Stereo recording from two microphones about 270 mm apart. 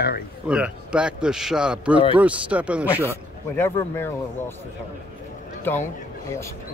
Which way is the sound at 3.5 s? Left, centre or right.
Centre.